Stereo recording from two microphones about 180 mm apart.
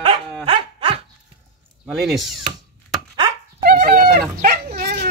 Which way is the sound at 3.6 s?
55° right (ahead or behind).